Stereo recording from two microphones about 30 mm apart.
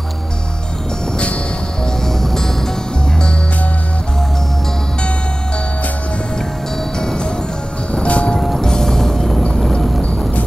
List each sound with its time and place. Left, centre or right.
2.2 s music: centre
7.0 s music: left
7.9 s music: left
8.5 s music: left
9.6 s horse: left